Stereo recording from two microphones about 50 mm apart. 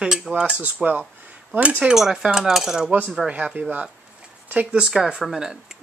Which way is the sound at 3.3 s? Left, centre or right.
Right.